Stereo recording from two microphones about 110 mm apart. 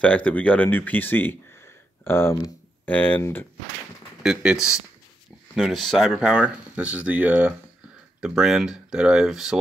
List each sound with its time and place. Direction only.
0.0 s speech: 10° left (ahead or behind)
4.2 s speech: 5° right (ahead or behind)
5.6 s speech: centre (ahead or behind)